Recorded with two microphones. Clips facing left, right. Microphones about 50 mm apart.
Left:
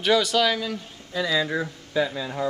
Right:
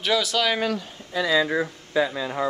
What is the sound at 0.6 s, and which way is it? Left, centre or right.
Speech, right.